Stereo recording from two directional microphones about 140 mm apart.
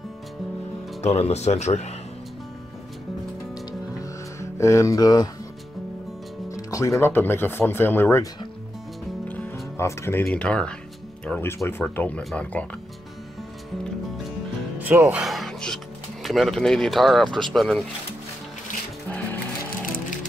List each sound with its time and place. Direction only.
1.0 s speech: 50° left (ahead or behind)
4.0 s music: 20° left (ahead or behind)
6.5 s speech: 20° left (ahead or behind)
9.8 s speech: 20° left (ahead or behind)
10.2 s speech: 10° left (ahead or behind)
14.8 s speech: 15° right (ahead or behind)
15.2 s speech: centre (ahead or behind)